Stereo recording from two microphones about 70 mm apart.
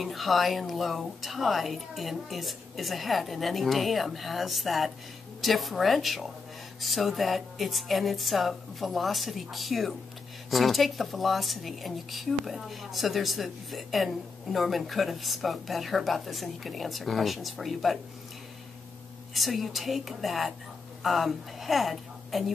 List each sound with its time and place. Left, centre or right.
0.0 s a woman's voice: centre
19.3 s a woman's voice: centre